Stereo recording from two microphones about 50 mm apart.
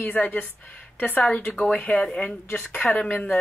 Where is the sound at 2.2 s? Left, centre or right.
Left.